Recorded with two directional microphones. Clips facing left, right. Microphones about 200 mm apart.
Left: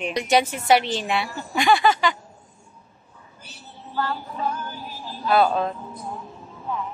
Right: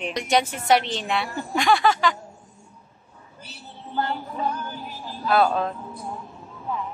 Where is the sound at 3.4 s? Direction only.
25° right (ahead or behind).